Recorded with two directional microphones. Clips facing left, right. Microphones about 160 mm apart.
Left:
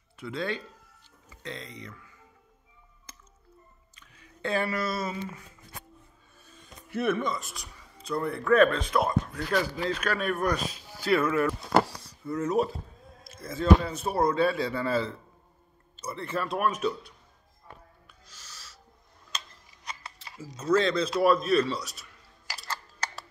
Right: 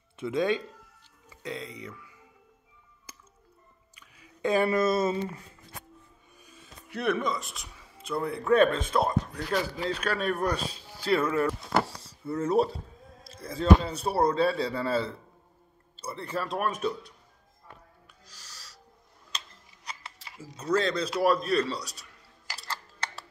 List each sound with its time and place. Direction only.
0.2 s speech: 20° right (ahead or behind)
1.4 s speech: 10° right (ahead or behind)
3.1 s music: 10° right (ahead or behind)
3.9 s a sound: 10° right (ahead or behind)
4.6 s speech: 25° right (ahead or behind)
6.4 s music: 10° right (ahead or behind)
6.9 s speech: centre (ahead or behind)
8.5 s speech: 25° right (ahead or behind)
18.2 s owl: 35° right (ahead or behind)
19.3 s a sound: 30° right (ahead or behind)
20.7 s speech: 35° right (ahead or behind)